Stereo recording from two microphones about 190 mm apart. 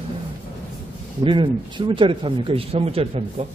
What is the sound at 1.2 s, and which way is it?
Speech, 25° right (ahead or behind).